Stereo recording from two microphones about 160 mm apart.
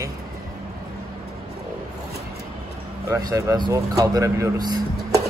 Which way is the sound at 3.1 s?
20° right (ahead or behind).